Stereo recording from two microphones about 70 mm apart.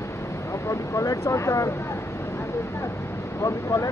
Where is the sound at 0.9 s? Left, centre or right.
Left.